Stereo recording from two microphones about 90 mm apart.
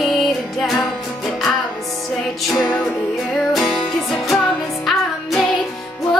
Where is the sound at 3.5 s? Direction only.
Centre (ahead or behind).